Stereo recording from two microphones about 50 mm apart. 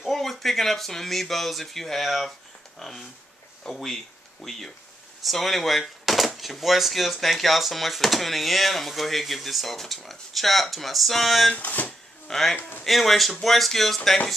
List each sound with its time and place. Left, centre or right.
0.0 s speech: centre
11.5 s speech: left
12.3 s speech: centre
12.5 s speech: left
12.8 s speech: centre